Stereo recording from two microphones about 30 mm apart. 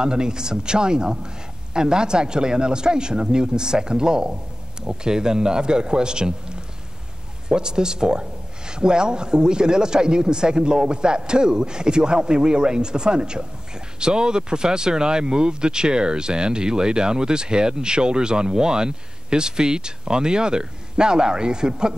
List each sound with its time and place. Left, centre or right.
0.0 s speech: right